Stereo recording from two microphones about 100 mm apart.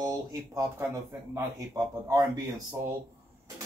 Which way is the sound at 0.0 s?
40° right (ahead or behind).